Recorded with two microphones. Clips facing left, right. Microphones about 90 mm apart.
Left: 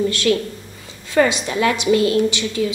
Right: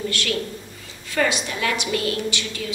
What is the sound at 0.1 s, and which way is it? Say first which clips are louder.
A woman's voice: left 7 dB; 25° left (ahead or behind).